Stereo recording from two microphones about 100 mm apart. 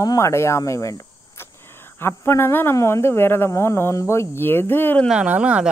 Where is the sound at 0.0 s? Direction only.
35° left (ahead or behind).